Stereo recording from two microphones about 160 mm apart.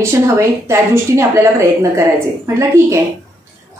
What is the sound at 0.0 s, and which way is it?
A woman's voice, 15° right (ahead or behind).